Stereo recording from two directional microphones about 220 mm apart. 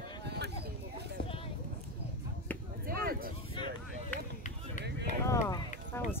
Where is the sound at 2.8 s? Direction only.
40° right (ahead or behind).